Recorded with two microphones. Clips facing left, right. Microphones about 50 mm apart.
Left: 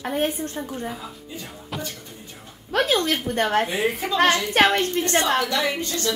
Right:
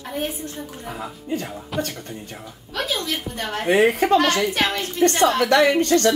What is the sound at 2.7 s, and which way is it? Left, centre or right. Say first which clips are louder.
Speech: left 5 dB; left.